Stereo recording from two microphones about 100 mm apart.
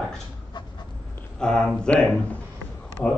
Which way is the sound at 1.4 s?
10° left (ahead or behind).